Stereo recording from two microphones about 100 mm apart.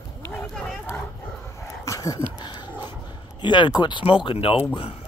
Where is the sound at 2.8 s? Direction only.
50° left (ahead or behind).